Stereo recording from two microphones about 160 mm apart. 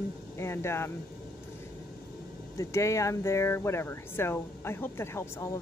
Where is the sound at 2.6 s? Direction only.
20° left (ahead or behind).